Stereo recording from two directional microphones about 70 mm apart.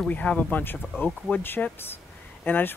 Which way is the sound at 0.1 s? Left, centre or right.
Centre.